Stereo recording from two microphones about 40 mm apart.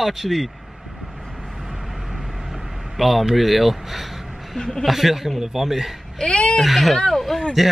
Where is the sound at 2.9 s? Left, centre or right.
Centre.